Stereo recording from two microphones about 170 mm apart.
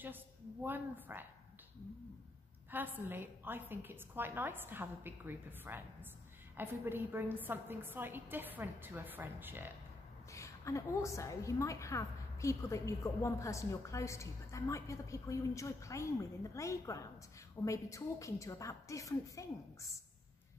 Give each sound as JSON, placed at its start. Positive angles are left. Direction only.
{"t": 0.7, "sound": "a woman's voice", "side_deg": -10}
{"t": 2.7, "sound": "a woman's voice", "side_deg": -10}
{"t": 10.3, "sound": "a woman's voice", "side_deg": 20}